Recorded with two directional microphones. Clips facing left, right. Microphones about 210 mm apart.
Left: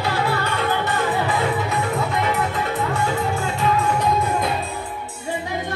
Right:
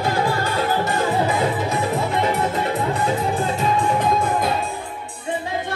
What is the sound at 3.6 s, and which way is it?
Music, 30° right (ahead or behind).